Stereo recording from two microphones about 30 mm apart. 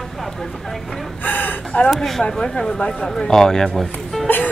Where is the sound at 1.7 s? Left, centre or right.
Left.